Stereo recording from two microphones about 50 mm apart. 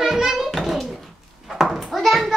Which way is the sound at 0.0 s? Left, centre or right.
Centre.